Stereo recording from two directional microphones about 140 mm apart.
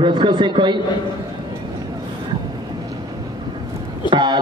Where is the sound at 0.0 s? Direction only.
35° right (ahead or behind).